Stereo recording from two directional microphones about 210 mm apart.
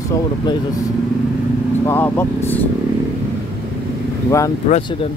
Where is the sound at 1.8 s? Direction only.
10° left (ahead or behind).